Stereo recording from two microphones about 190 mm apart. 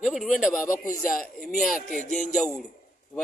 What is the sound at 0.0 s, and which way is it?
Speech, centre (ahead or behind).